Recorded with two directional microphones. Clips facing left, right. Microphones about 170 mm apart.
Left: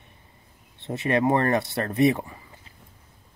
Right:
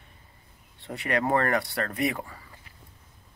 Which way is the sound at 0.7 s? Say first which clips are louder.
Left 5 dB; 25° left (ahead or behind).